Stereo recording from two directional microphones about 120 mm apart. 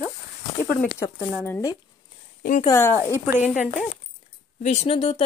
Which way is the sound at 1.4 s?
20° left (ahead or behind).